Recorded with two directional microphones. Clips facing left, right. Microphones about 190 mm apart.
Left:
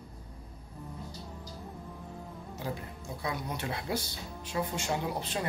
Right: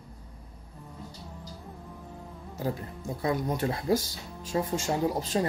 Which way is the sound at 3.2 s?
45° right (ahead or behind).